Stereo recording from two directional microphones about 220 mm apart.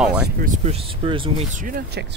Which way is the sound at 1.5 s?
35° right (ahead or behind).